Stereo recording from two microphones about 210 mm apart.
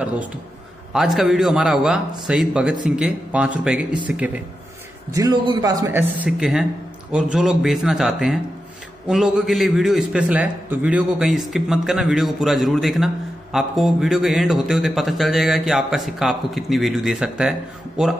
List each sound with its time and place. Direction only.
0.9 s a man's voice: centre (ahead or behind)
5.1 s a man's voice: 20° right (ahead or behind); by 18.1 s 5° right (ahead or behind)